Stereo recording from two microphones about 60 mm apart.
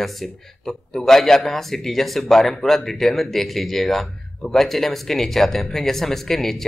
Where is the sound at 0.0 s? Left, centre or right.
Centre.